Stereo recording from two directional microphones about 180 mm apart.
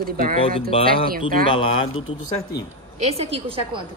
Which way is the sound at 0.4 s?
30° left (ahead or behind).